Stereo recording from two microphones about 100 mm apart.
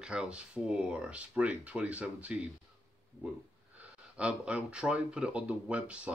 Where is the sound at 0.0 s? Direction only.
10° right (ahead or behind).